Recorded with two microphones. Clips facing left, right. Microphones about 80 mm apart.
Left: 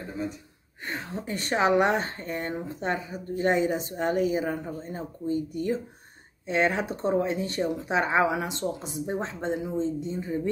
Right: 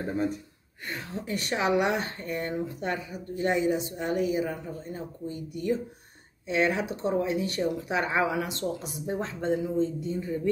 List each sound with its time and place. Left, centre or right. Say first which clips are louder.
0.8 s speech: left 1 dB; left